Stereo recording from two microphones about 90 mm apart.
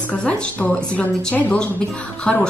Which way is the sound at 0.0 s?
10° left (ahead or behind).